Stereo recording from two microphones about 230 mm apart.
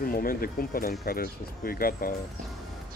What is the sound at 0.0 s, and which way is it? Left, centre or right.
Speech, left.